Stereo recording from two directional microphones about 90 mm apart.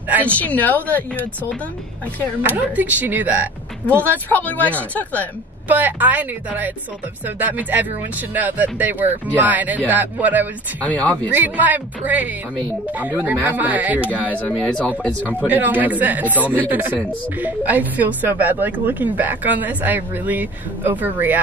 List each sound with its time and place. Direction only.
0.2 s speech: 15° left (ahead or behind)
2.4 s speech: 20° right (ahead or behind)
4.1 s speech: 20° left (ahead or behind)
5.7 s speech: 20° right (ahead or behind)
10.8 s speech: 15° left (ahead or behind)
11.3 s speech: 20° right (ahead or behind)
14.8 s speech: 15° left (ahead or behind)
15.4 s speech: 20° right (ahead or behind)